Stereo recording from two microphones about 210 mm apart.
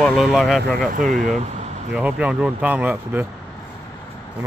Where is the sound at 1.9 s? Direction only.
5° right (ahead or behind).